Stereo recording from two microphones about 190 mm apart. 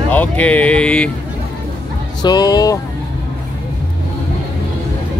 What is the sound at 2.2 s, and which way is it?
Speech, 20° left (ahead or behind).